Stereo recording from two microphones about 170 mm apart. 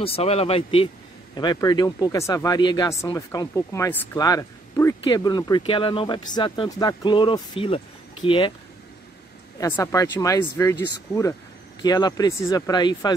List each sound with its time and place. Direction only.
0.0 s speech: 35° left (ahead or behind); by 4.2 s 15° left (ahead or behind)
4.2 s a sound: 20° left (ahead or behind)
5.0 s speech: 25° left (ahead or behind)
9.6 s speech: 15° left (ahead or behind)